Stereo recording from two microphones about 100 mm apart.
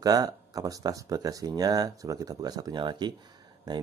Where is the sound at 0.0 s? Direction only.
40° right (ahead or behind).